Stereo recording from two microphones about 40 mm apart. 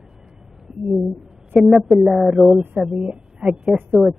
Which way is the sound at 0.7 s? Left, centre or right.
Right.